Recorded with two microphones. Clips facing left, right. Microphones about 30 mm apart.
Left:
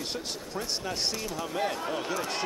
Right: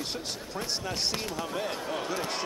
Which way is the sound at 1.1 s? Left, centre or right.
Right.